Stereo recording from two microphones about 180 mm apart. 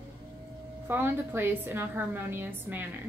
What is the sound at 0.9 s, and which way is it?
A woman's voice, 10° right (ahead or behind).